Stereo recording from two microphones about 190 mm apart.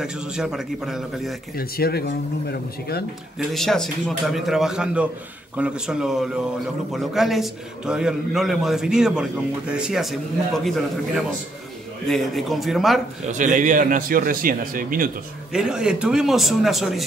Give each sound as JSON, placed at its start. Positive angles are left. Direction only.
{"t": 0.0, "sound": "a man's voice", "side_deg": -5}
{"t": 1.6, "sound": "speech", "side_deg": 55}
{"t": 3.3, "sound": "a man's voice", "side_deg": 0}
{"t": 12.1, "sound": "a man's voice", "side_deg": 0}
{"t": 13.3, "sound": "a man's voice", "side_deg": -40}
{"t": 15.5, "sound": "a man's voice", "side_deg": -5}